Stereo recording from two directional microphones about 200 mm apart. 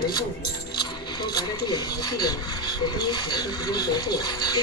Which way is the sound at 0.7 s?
20° left (ahead or behind).